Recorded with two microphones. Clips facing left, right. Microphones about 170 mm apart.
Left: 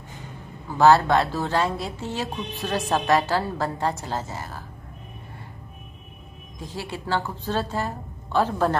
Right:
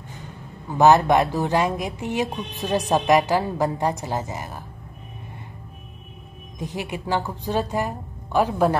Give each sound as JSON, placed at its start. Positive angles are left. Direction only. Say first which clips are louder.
{"t": 0.7, "sound": "speech", "louder": "right 1 dB", "side_deg": -20}
{"t": 6.6, "sound": "speech", "louder": "right 3 dB", "side_deg": -15}